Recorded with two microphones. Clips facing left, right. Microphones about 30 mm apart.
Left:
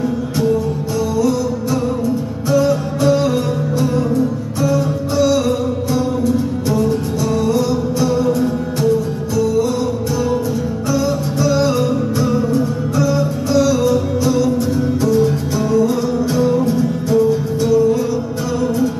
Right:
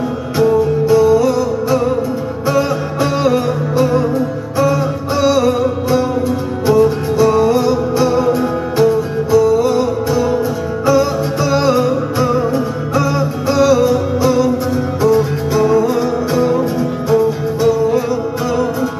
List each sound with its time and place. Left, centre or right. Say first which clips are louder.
0.4 s music: right 6 dB; centre